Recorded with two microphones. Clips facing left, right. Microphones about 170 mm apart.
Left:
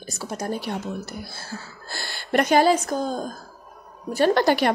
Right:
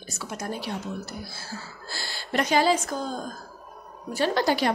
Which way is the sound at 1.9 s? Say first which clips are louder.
Left 6 dB; 55° left (ahead or behind).